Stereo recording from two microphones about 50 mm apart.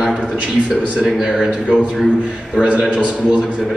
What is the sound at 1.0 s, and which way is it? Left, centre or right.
Mantra, centre.